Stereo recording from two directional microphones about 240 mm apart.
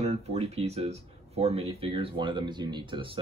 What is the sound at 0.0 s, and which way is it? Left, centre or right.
Speech, right.